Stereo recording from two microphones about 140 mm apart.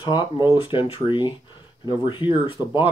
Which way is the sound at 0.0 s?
35° left (ahead or behind).